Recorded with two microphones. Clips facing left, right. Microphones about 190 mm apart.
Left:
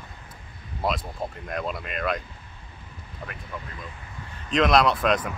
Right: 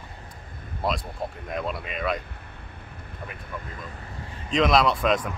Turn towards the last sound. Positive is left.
turn(degrees=0)  # may be behind; listen again after turning